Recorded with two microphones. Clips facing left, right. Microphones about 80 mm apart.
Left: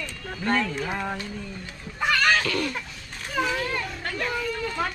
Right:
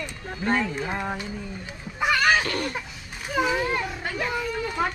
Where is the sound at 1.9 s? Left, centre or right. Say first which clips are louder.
Right 1 dB; centre.